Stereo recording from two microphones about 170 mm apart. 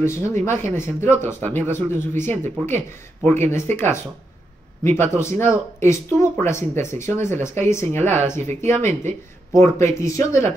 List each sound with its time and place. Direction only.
0.0 s speech: 15° left (ahead or behind)